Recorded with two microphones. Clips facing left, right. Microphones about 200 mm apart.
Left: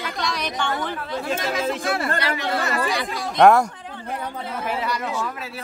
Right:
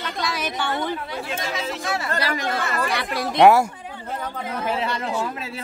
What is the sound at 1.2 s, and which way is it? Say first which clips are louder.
Speech: left 8 dB; 50° left (ahead or behind).